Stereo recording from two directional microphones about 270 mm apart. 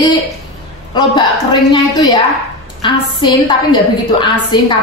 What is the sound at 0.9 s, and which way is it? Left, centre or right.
A woman's voice, centre.